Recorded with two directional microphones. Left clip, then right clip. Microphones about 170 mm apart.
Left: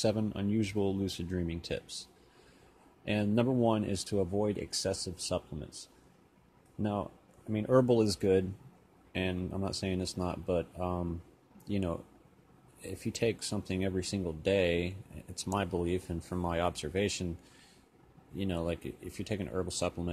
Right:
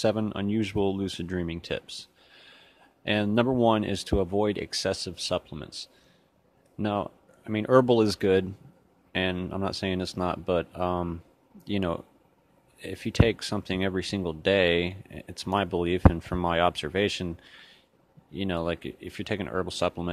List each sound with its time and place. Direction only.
0.0 s speech: 30° right (ahead or behind)
3.1 s speech: 35° right (ahead or behind)